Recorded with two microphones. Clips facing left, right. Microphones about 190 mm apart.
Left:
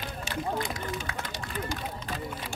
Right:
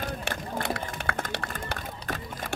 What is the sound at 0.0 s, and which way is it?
Run, 55° right (ahead or behind).